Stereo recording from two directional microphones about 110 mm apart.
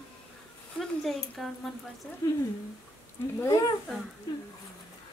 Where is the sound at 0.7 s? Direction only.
5° left (ahead or behind).